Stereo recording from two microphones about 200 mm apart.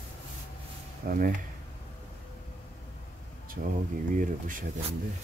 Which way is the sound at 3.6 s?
50° right (ahead or behind).